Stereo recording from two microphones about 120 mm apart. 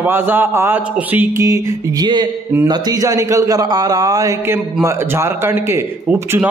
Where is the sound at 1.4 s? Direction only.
30° right (ahead or behind).